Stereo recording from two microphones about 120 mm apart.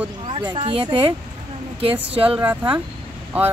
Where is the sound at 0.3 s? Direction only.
45° right (ahead or behind).